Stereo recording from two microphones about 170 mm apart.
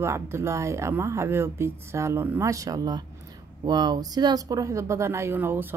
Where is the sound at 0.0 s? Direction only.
15° right (ahead or behind).